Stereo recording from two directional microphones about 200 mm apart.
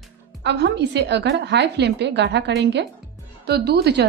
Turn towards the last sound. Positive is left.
turn(degrees=-55)  # may be behind; listen again after turning